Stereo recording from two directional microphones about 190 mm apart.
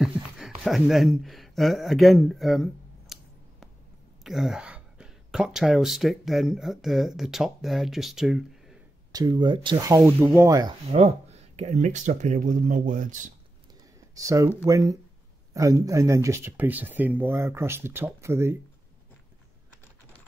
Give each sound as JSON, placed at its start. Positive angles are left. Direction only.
{"t": 0.0, "sound": "a sound", "side_deg": 0}
{"t": 4.2, "sound": "speech", "side_deg": 0}
{"t": 9.1, "sound": "speech", "side_deg": -20}
{"t": 10.9, "sound": "speech", "side_deg": -35}
{"t": 14.1, "sound": "speech", "side_deg": -15}